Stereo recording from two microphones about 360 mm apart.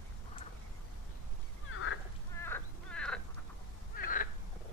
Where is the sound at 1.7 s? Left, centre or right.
Left.